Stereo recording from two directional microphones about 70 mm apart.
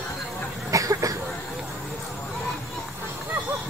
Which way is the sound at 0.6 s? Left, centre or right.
Right.